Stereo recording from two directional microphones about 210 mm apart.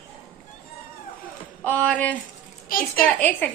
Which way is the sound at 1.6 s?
5° left (ahead or behind).